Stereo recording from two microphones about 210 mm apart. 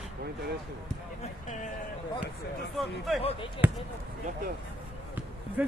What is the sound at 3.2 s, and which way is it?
Speech, 30° left (ahead or behind).